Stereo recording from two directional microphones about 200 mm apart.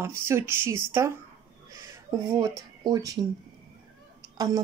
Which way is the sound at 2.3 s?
15° right (ahead or behind).